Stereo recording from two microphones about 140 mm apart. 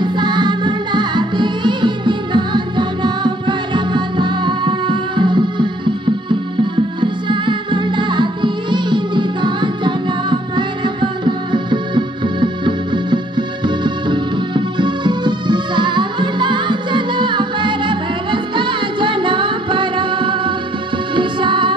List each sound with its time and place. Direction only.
0.0 s music: 35° right (ahead or behind)